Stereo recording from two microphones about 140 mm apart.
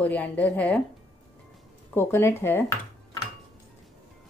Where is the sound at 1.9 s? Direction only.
15° left (ahead or behind).